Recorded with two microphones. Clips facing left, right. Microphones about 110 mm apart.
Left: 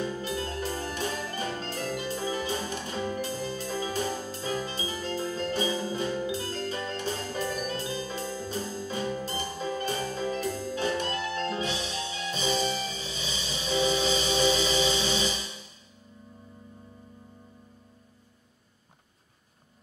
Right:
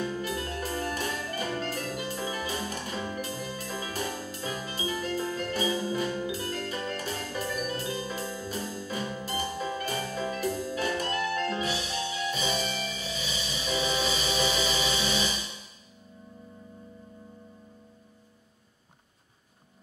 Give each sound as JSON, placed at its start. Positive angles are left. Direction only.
{"t": 0.0, "sound": "music", "side_deg": 30}